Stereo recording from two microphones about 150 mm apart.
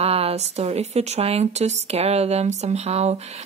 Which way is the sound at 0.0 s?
40° right (ahead or behind).